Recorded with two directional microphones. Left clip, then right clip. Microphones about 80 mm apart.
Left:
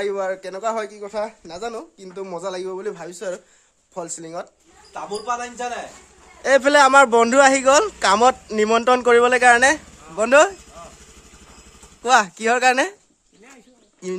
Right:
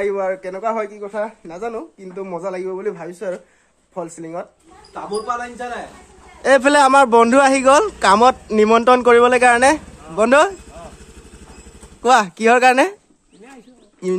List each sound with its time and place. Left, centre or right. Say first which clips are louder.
0.0 s a man's voice: right 3 dB; left
1.0 s speech: right 2 dB; left
2.2 s speech: right 3 dB; left
2.8 s a man's voice: right 4 dB; left
4.0 s speech: right 3 dB; left
6.4 s a man's voice: right 2 dB; right; by 9.8 s centre
10.1 s speech: right 1 dB; right
12.0 s speech: right 3 dB; right
14.0 s speech: right 7 dB; right